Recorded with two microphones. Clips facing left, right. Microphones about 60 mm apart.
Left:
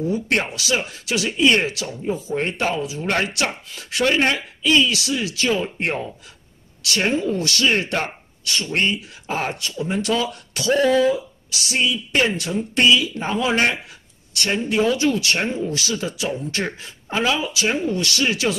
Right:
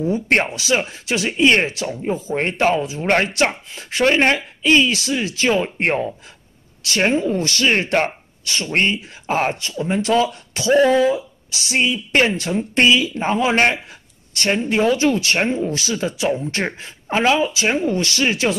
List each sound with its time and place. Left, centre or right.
0.5 s speech: right
6.8 s a woman's voice: right
11.5 s a woman's voice: right